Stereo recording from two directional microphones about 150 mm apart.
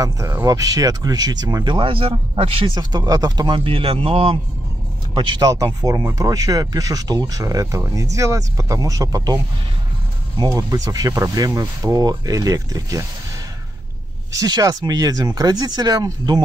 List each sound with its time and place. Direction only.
0.0 s speech: 20° right (ahead or behind)
14.3 s speech: 25° right (ahead or behind)